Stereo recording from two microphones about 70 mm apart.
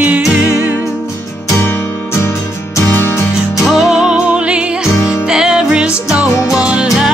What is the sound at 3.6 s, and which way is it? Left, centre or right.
Music, centre.